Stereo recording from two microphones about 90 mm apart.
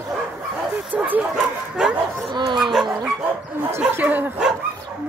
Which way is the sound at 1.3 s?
10° right (ahead or behind).